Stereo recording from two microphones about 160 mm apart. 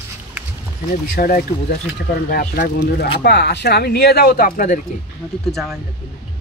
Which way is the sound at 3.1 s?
90° left.